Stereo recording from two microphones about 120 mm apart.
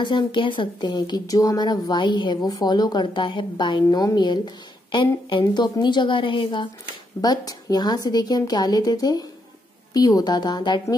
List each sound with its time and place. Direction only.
0.0 s a woman's voice: 40° left (ahead or behind)
7.2 s a woman's voice: 35° left (ahead or behind)